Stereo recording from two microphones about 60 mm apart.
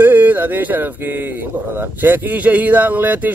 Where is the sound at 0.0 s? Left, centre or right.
Right.